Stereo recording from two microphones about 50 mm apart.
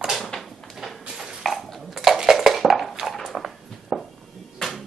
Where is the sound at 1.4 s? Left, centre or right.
Centre.